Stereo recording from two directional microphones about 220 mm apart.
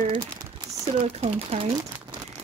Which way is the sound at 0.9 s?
30° right (ahead or behind).